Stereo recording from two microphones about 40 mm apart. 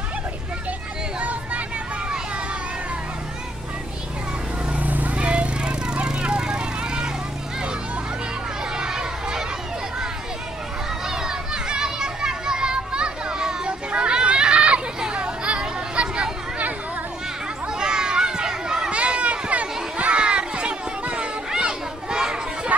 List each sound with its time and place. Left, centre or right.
4.7 s cat: right
5.1 s a sound: right
8.7 s children playing: centre
11.1 s children playing: centre
17.7 s children playing: centre
18.9 s children playing: right
22.7 s chatter: right